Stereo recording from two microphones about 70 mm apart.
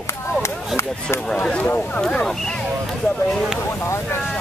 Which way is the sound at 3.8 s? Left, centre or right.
Left.